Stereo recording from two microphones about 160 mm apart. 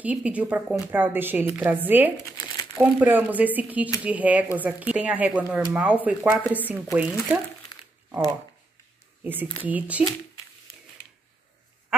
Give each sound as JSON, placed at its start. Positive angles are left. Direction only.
{"t": 0.0, "sound": "speech", "side_deg": -10}
{"t": 2.3, "sound": "crumpling", "side_deg": 25}
{"t": 2.8, "sound": "speech", "side_deg": -10}
{"t": 9.2, "sound": "speech", "side_deg": -10}